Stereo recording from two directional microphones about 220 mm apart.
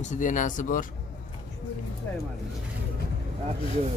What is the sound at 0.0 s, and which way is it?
Speech, 35° left (ahead or behind).